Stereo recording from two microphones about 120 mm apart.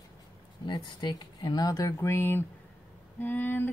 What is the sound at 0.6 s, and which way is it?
Speech, 40° left (ahead or behind).